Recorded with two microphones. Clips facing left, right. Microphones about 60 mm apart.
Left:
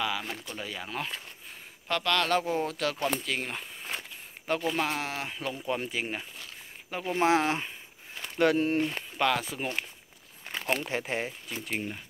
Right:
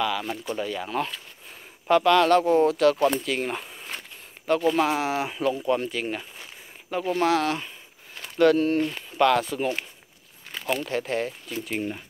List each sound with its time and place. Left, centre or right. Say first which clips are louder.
0.6 s speech: right 8 dB; centre
1.9 s speech: right 10 dB; centre
2.2 s speech: right 9 dB; centre
5.7 s speech: right 6 dB; centre
7.2 s speech: right 1 dB; left
9.2 s speech: right 7 dB; centre
10.8 s speech: right 5 dB; centre
11.4 s speech: right 5 dB; centre